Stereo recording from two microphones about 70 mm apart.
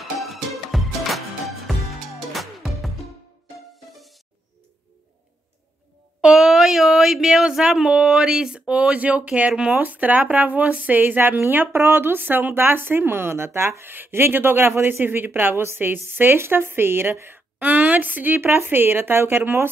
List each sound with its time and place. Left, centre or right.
0.2 s music: centre
3.9 s music: centre
6.2 s speech: centre
9.8 s speech: right